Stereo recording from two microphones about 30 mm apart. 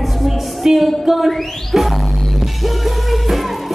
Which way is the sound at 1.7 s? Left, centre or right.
Centre.